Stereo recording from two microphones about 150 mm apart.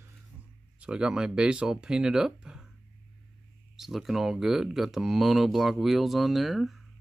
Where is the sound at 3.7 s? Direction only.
Centre (ahead or behind).